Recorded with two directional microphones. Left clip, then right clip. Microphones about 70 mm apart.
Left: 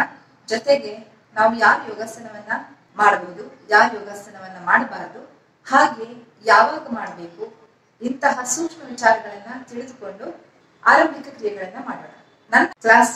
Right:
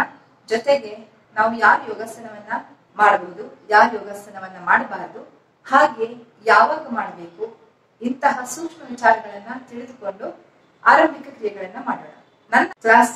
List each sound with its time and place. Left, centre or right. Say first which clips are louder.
0.0 s a woman's voice: left 1 dB; right
10.8 s a woman's voice: right 1 dB; right
11.1 s a woman's voice: even; right